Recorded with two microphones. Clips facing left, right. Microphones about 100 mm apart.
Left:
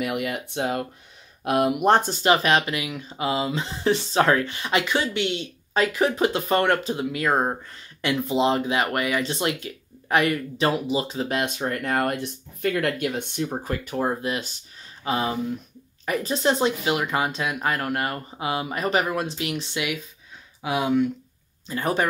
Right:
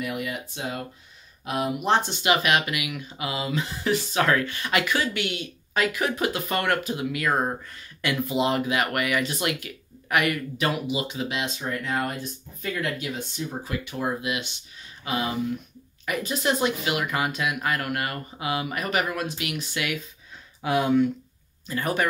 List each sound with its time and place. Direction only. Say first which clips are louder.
0.0 s speech: left 4 dB; 65° left (ahead or behind); by 19.9 s 25° left (ahead or behind)
20.6 s speech: right 1 dB; 10° left (ahead or behind)
21.6 s speech: left 2 dB; 25° left (ahead or behind)